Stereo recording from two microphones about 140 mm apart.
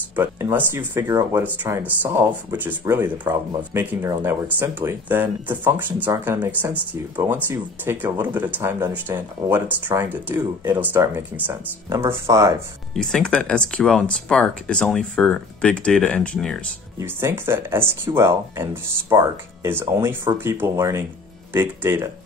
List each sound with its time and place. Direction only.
0.1 s speech: 15° right (ahead or behind)
12.9 s speech: 5° left (ahead or behind)
17.0 s speech: 15° right (ahead or behind)